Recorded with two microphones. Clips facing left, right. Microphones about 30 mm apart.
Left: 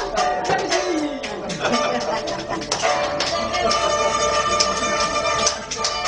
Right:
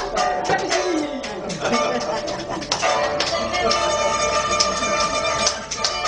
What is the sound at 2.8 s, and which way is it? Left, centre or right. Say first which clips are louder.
Music: right 1 dB; centre.